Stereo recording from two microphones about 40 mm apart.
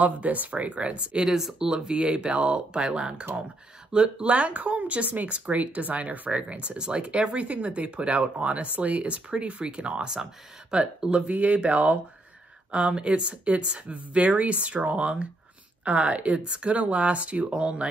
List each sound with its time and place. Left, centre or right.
0.0 s speech: right
1.3 s speech: centre
1.7 s speech: right